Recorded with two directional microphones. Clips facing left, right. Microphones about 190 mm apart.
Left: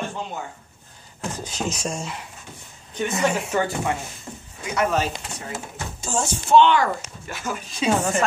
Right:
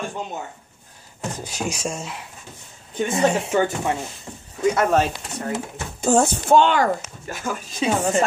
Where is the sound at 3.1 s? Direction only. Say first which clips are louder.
Right 4 dB; 25° right (ahead or behind).